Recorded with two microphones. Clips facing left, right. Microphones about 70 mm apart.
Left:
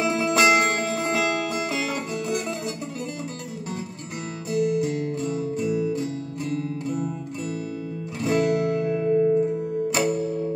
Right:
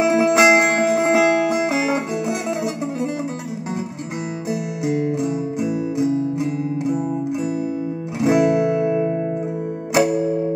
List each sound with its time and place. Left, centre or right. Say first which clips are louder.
0.0 s music: right 6 dB; right
4.5 s music: left 2 dB; centre
8.2 s music: right 6 dB; centre